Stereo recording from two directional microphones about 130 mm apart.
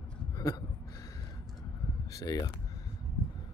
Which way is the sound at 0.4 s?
25° left (ahead or behind).